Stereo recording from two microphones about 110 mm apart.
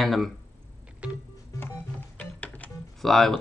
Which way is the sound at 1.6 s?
15° left (ahead or behind).